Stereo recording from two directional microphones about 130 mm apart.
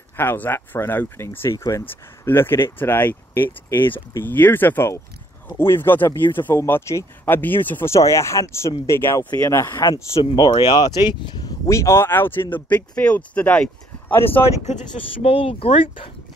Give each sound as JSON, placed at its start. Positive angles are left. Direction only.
{"t": 0.2, "sound": "speech", "side_deg": 15}
{"t": 15.2, "sound": "speech", "side_deg": 45}